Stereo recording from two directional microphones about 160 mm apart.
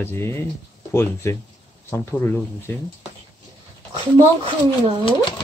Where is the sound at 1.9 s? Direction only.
15° left (ahead or behind).